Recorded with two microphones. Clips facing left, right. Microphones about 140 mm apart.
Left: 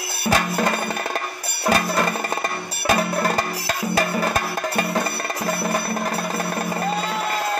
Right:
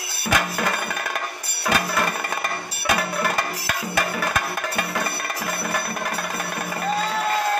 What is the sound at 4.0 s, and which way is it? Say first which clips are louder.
Music: left 2 dB; 35° left (ahead or behind).